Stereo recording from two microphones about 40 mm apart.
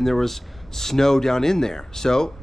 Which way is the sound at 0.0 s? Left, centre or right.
Centre.